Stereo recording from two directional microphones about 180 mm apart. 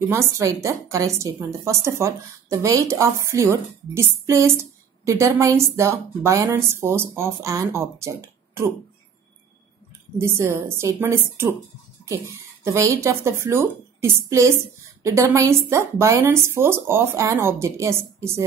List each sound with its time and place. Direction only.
0.1 s a woman's voice: 15° right (ahead or behind)
10.1 s a woman's voice: 15° right (ahead or behind)
12.6 s a woman's voice: 15° right (ahead or behind)